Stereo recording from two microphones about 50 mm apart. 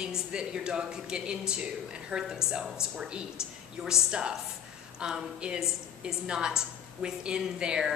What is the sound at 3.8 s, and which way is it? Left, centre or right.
A woman's voice, centre.